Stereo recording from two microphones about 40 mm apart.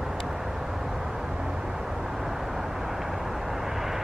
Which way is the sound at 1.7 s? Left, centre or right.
Centre.